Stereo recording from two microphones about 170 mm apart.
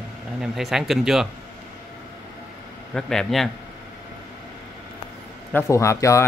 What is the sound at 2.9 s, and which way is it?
Speech, 5° left (ahead or behind).